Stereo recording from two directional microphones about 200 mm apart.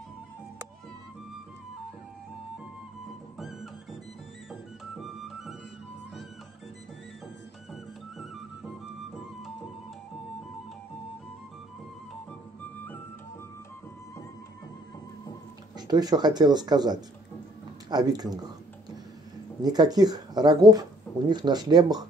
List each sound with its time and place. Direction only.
4.5 s music: centre (ahead or behind)
7.7 s music: centre (ahead or behind)
15.9 s speech: 20° right (ahead or behind)
19.6 s speech: 20° right (ahead or behind)